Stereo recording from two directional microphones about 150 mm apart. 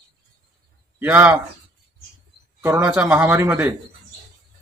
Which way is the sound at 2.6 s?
10° right (ahead or behind).